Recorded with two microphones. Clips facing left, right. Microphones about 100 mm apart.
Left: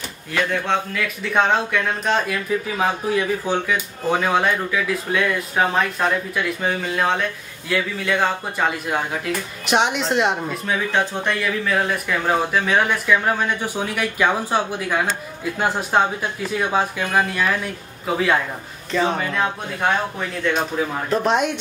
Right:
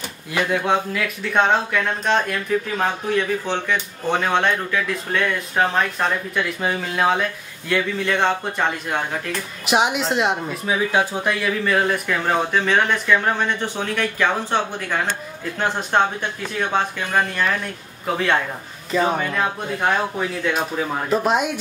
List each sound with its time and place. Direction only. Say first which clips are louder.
0.3 s speech: right 1 dB; 15° right (ahead or behind)
0.9 s speech: even; centre (ahead or behind)